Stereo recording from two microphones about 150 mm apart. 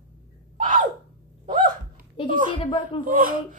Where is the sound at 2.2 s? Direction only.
35° left (ahead or behind).